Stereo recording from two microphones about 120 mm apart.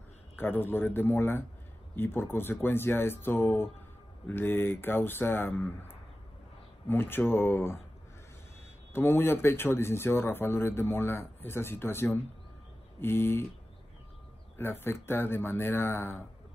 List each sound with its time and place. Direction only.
0.4 s speech: 20° left (ahead or behind)
8.9 s speech: 20° left (ahead or behind)
14.6 s speech: 20° left (ahead or behind)